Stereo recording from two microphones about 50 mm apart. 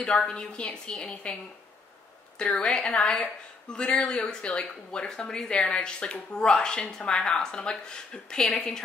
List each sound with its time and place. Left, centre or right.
0.0 s speech: centre
2.4 s speech: centre